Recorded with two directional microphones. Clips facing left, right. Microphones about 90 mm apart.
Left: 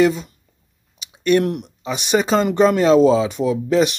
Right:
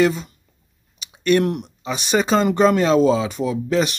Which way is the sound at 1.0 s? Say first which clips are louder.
Left 1 dB; 15° left (ahead or behind).